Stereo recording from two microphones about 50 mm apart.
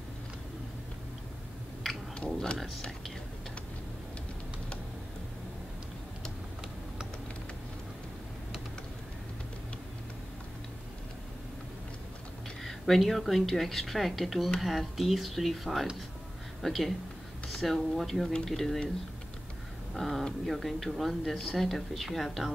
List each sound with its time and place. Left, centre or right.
2.1 s speech: centre
12.6 s speech: centre
19.9 s speech: centre